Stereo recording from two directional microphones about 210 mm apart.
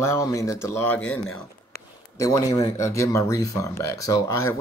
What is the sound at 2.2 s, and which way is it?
Speech, 15° left (ahead or behind).